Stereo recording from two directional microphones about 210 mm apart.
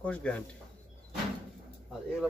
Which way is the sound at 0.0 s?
5° left (ahead or behind).